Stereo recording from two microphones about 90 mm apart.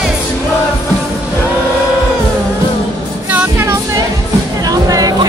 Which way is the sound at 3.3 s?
30° right (ahead or behind).